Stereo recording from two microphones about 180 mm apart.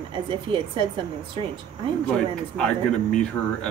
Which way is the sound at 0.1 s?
30° right (ahead or behind).